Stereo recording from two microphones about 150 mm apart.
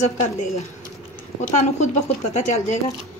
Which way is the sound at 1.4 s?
50° left (ahead or behind).